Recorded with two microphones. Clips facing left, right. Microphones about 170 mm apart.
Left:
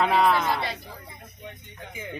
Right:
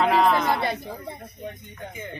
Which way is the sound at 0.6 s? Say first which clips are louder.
Right 5 dB; 50° right (ahead or behind).